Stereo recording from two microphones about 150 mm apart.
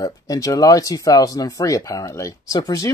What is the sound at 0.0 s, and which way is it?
Speech, 25° left (ahead or behind).